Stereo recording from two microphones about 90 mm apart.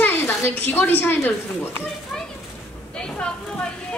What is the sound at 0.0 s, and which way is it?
Speech, 25° left (ahead or behind).